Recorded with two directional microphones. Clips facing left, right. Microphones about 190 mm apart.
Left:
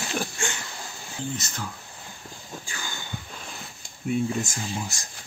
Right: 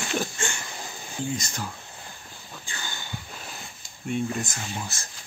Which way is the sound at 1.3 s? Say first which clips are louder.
Right 2 dB; 10° right (ahead or behind).